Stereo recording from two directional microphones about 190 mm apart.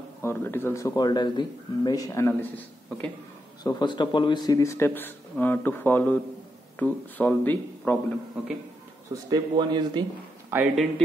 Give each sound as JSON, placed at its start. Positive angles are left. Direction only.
{"t": 0.2, "sound": "speech", "side_deg": 10}
{"t": 3.6, "sound": "speech", "side_deg": 25}
{"t": 9.3, "sound": "a man's voice", "side_deg": -20}
{"t": 10.5, "sound": "speech", "side_deg": -10}